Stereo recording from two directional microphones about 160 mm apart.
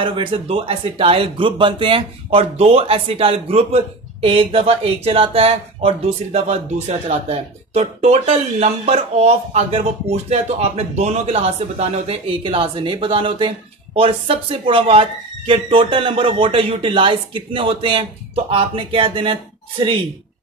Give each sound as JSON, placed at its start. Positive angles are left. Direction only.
{"t": 0.0, "sound": "speech", "side_deg": -30}